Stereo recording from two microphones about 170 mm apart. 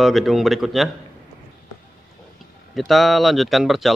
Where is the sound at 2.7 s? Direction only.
Centre (ahead or behind).